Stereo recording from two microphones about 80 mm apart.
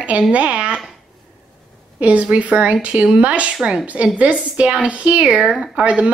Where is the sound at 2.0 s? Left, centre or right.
Centre.